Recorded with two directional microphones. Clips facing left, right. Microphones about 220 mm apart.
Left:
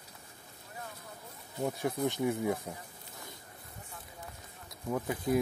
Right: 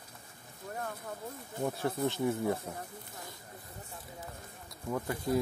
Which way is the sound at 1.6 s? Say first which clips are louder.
Even; 15° left (ahead or behind).